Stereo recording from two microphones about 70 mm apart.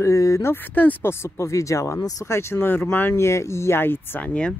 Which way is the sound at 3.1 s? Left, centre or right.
Left.